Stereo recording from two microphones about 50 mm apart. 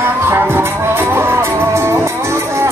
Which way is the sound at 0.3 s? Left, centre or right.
Right.